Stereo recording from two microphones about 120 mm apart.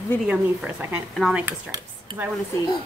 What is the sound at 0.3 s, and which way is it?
Speech, 10° right (ahead or behind).